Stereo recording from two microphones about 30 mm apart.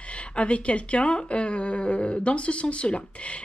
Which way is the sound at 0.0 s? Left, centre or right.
Left.